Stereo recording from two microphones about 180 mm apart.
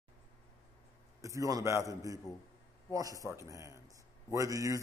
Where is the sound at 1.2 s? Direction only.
15° right (ahead or behind).